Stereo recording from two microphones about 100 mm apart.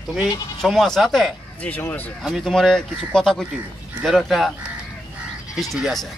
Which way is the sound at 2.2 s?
Centre (ahead or behind).